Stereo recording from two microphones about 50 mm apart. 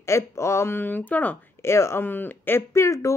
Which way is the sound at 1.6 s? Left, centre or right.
Left.